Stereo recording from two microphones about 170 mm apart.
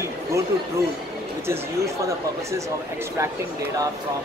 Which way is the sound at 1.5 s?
15° right (ahead or behind).